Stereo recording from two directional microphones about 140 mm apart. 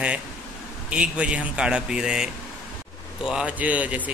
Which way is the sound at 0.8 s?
10° right (ahead or behind).